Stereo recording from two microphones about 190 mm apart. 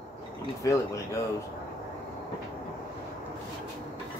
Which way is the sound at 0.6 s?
15° left (ahead or behind).